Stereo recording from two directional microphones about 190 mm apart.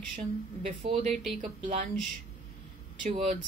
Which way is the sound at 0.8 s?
30° right (ahead or behind).